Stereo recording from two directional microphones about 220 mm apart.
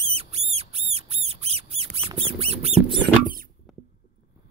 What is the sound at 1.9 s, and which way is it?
Mouse, 25° right (ahead or behind).